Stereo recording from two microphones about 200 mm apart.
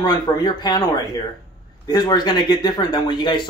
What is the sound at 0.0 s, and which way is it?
Speech, 20° left (ahead or behind).